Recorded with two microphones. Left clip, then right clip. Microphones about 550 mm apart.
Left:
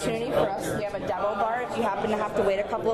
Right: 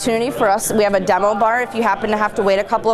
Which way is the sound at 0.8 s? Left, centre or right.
Right.